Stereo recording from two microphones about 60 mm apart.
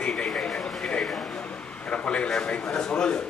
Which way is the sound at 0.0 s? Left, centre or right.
Centre.